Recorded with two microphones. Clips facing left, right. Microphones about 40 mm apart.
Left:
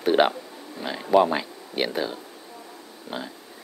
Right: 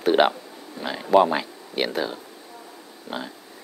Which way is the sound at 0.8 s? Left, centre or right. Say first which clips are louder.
Right 2 dB; centre.